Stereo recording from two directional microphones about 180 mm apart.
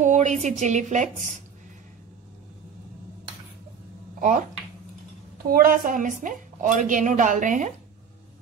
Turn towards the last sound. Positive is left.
turn(degrees=-45)  # may be behind; listen again after turning